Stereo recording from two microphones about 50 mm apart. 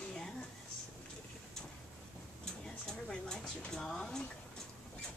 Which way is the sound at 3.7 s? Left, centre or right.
Centre.